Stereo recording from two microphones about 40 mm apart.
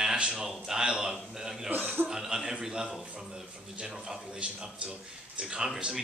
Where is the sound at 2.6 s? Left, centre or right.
Right.